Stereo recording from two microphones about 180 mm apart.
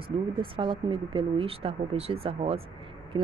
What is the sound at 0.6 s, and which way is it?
Speech, 30° right (ahead or behind).